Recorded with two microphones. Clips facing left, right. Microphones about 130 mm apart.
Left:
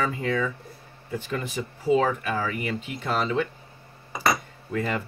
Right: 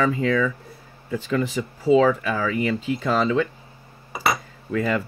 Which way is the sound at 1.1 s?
90° right.